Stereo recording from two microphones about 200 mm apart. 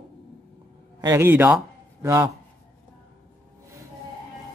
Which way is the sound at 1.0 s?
10° right (ahead or behind).